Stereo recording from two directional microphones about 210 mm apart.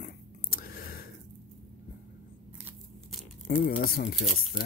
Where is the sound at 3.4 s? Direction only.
40° left (ahead or behind).